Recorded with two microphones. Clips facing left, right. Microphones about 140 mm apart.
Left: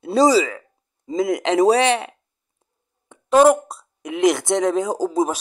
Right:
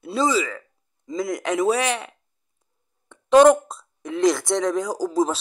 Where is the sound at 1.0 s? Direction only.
20° left (ahead or behind).